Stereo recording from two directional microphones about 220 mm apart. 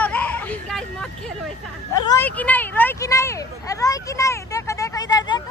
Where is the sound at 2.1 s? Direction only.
5° left (ahead or behind).